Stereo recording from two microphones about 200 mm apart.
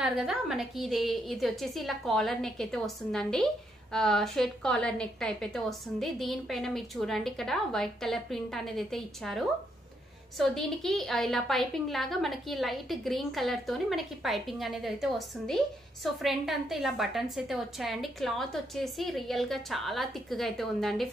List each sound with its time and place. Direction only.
0.0 s a woman's voice: centre (ahead or behind)